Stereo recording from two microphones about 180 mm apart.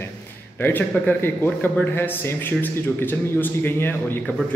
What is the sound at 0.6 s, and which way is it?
A man's voice, 10° left (ahead or behind).